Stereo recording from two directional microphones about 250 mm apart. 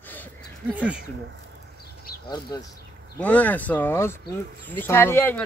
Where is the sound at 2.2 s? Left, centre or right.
Centre.